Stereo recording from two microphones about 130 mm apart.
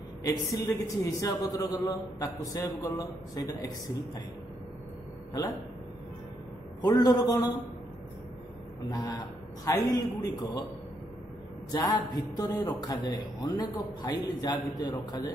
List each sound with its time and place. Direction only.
0.2 s a man's voice: 25° left (ahead or behind)
6.8 s a man's voice: 30° left (ahead or behind)
8.8 s a man's voice: 30° left (ahead or behind)
11.7 s a man's voice: 30° left (ahead or behind)